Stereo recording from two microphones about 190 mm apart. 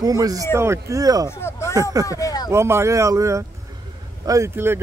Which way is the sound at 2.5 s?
15° right (ahead or behind).